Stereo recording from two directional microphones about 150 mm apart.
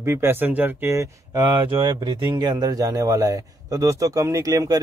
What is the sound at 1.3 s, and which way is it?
Speech, 30° right (ahead or behind).